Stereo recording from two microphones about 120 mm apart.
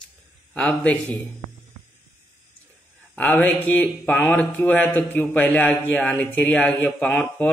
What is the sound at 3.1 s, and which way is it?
Speech, 10° left (ahead or behind).